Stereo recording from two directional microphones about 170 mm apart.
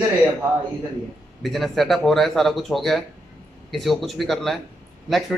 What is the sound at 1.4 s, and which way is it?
A man's voice, centre (ahead or behind).